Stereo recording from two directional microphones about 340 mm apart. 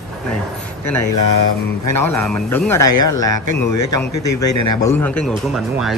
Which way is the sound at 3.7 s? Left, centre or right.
Left.